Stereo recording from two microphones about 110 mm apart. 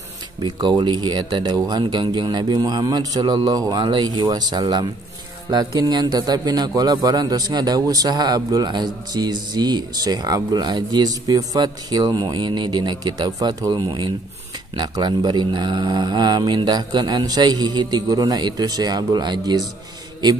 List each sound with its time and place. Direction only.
0.4 s a man's voice: 45° right (ahead or behind)